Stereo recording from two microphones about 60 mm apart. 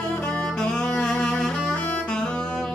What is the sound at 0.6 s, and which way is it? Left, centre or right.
Music, centre.